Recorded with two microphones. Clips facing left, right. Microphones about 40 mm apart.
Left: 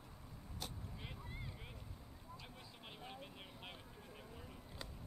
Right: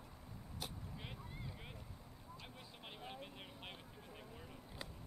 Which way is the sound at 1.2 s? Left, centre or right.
Centre.